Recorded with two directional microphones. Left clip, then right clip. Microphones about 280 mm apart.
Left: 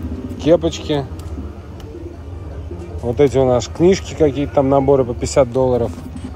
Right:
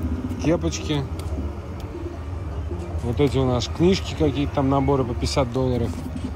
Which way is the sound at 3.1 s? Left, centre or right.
Centre.